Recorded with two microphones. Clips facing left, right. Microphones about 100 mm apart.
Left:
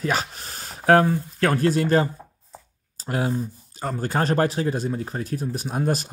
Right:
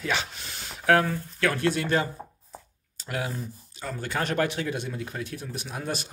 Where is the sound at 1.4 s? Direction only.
40° left (ahead or behind).